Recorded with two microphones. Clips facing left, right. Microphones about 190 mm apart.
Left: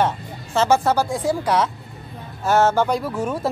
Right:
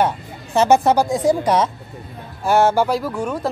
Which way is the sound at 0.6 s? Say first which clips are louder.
Right 3 dB; 20° right (ahead or behind).